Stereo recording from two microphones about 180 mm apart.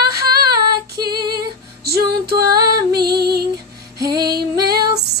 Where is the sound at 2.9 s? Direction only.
60° right (ahead or behind).